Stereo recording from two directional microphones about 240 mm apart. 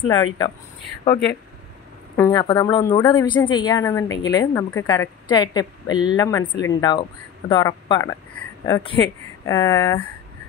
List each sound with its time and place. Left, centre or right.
0.0 s speech: centre
2.1 s speech: centre